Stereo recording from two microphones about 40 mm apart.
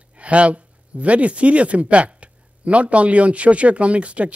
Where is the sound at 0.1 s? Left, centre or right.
Right.